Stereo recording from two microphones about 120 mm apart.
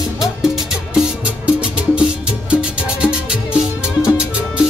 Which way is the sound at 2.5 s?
10° right (ahead or behind).